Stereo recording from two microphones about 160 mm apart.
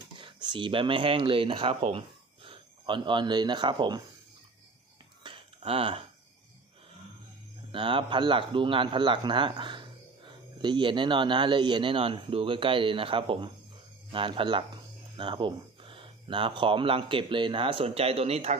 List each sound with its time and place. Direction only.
0.2 s speech: 30° right (ahead or behind)
5.2 s a sound: 30° right (ahead or behind)
7.7 s a man's voice: 30° right (ahead or behind)